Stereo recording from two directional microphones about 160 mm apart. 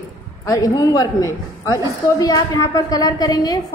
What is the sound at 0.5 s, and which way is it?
A woman's voice, 20° left (ahead or behind).